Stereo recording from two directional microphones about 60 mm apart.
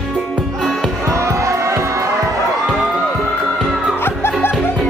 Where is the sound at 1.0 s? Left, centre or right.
Right.